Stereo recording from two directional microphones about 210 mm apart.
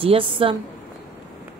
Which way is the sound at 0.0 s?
25° right (ahead or behind).